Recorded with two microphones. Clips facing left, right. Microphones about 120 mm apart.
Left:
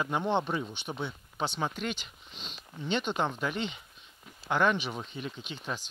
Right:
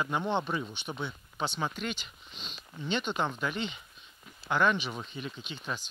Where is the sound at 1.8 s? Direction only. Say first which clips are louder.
Left 1 dB; 55° left (ahead or behind).